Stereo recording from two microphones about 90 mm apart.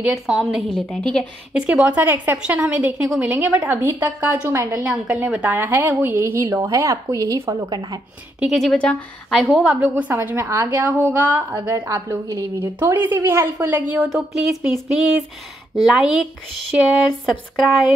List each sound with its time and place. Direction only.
0.1 s a sound: 5° right (ahead or behind)
0.7 s a woman's voice: 10° left (ahead or behind)
1.5 s a woman's voice: 10° right (ahead or behind); by 7.5 s 35° right (ahead or behind)
7.7 s speech: 50° right (ahead or behind)
8.6 s a woman's voice: 10° left (ahead or behind)
9.3 s a sound: centre (ahead or behind)
9.9 s a woman's voice: 20° right (ahead or behind)
10.3 s a woman's voice: 30° right (ahead or behind)
11.9 s a woman's voice: 40° right (ahead or behind)
12.5 s a woman's voice: 25° right (ahead or behind)
14.0 s a sound: 5° right (ahead or behind)